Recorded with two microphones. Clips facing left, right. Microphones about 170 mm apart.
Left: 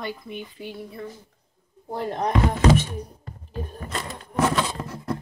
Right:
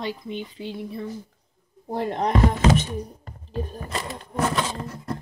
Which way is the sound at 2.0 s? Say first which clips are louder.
Right 1 dB; 20° right (ahead or behind).